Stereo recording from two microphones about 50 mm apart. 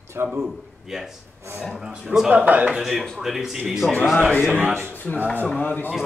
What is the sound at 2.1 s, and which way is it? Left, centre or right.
Speech, right.